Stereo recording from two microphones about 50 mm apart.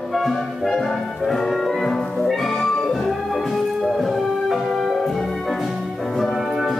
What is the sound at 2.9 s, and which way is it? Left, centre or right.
Music, centre.